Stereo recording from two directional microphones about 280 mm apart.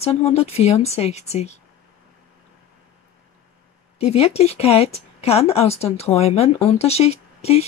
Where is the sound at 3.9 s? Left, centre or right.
Left.